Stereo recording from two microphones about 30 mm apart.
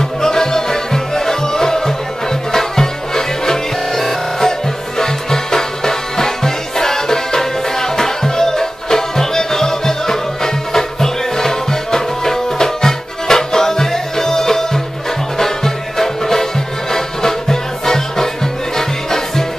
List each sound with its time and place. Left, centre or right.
0.2 s music: centre